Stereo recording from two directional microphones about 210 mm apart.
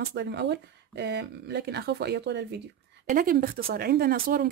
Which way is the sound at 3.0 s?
40° right (ahead or behind).